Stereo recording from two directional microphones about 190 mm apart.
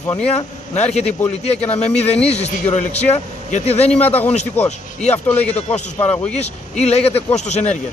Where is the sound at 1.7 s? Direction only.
35° left (ahead or behind).